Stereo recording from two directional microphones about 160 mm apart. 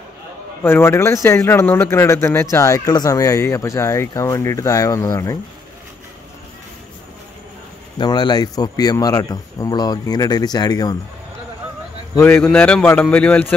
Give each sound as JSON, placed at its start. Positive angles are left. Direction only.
{"t": 0.7, "sound": "a man's voice", "side_deg": 15}
{"t": 8.0, "sound": "a man's voice", "side_deg": 25}
{"t": 12.2, "sound": "speech", "side_deg": 10}